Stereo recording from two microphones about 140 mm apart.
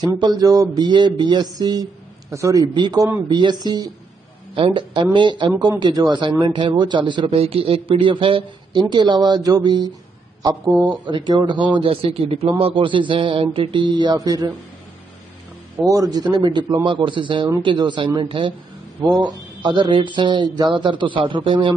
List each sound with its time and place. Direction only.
0.0 s a man's voice: 30° right (ahead or behind)
15.8 s a man's voice: 25° right (ahead or behind)